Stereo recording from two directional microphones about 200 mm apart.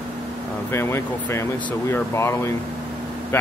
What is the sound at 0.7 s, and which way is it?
Speech, 15° left (ahead or behind).